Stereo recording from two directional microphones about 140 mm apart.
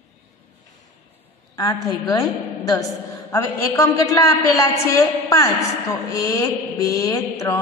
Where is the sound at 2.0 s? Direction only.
25° left (ahead or behind).